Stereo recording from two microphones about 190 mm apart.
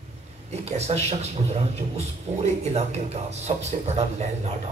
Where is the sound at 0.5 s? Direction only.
35° right (ahead or behind).